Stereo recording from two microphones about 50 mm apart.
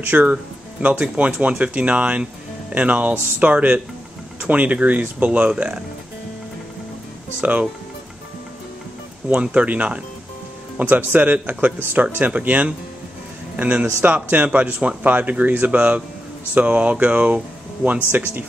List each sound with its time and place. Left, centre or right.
0.0 s speech: right
7.3 s speech: right
9.4 s speech: right
10.9 s speech: right
18.1 s speech: right